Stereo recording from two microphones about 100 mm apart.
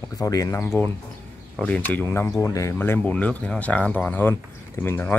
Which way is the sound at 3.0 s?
15° left (ahead or behind).